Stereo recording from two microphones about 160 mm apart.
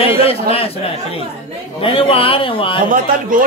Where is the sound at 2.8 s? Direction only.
60° right (ahead or behind).